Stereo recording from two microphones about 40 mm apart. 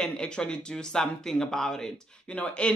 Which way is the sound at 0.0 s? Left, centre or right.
Left.